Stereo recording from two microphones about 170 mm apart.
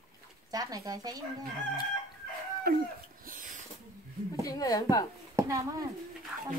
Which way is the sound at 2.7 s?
65° right (ahead or behind).